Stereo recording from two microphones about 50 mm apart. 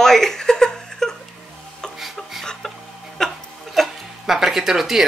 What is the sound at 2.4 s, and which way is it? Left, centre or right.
Music, centre.